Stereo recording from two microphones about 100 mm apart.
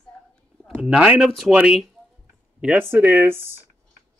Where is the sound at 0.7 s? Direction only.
10° right (ahead or behind).